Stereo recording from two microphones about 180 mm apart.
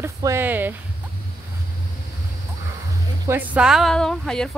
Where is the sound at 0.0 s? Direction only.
15° right (ahead or behind).